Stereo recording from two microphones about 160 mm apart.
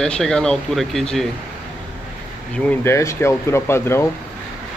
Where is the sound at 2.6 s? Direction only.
15° left (ahead or behind).